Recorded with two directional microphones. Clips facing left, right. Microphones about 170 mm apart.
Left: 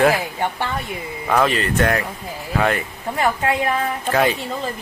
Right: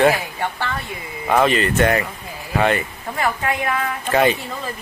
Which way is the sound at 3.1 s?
30° left (ahead or behind).